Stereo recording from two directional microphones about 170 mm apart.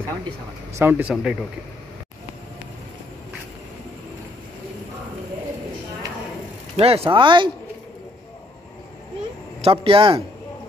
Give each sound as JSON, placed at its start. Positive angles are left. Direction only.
{"t": 0.7, "sound": "speech", "side_deg": -10}
{"t": 6.8, "sound": "speech", "side_deg": -35}
{"t": 9.6, "sound": "a man's voice", "side_deg": -30}